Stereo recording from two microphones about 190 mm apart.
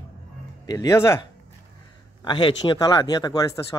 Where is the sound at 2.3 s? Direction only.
25° left (ahead or behind).